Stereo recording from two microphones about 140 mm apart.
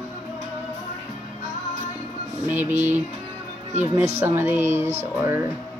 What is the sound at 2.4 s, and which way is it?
Speech, 15° right (ahead or behind).